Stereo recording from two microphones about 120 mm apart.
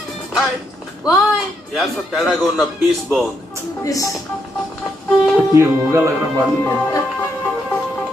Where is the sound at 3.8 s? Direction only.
30° left (ahead or behind).